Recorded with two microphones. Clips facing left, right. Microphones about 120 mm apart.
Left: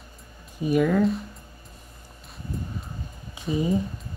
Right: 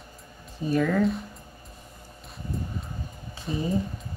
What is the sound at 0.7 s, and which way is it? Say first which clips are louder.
Speech: left 2 dB; 10° left (ahead or behind).